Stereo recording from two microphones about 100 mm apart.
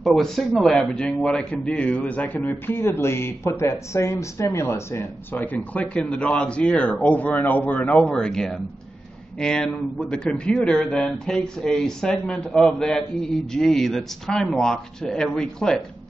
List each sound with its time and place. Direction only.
0.0 s a man's voice: centre (ahead or behind); by 8.1 s 15° left (ahead or behind)
8.1 s a man's voice: 5° left (ahead or behind)